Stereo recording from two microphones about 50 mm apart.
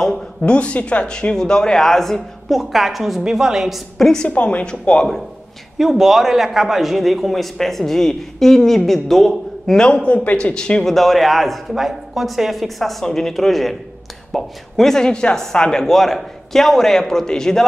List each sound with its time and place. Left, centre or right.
0.5 s speech: left; by 3.8 s centre
4.0 s speech: centre
4.3 s a woman's voice: left
5.8 s a man's voice: centre
10.0 s a man's voice: left
15.8 s speech: centre